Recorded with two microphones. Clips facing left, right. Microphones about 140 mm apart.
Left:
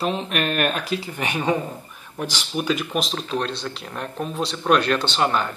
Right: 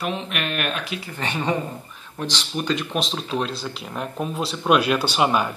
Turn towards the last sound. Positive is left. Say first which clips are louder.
# right 1 dB
turn(degrees=-10)  # may be behind; listen again after turning